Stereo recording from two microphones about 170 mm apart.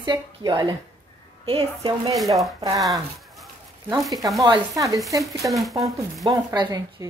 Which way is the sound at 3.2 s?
Centre (ahead or behind).